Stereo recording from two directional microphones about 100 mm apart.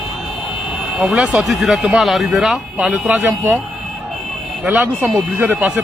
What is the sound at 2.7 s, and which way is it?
Speech, 15° right (ahead or behind).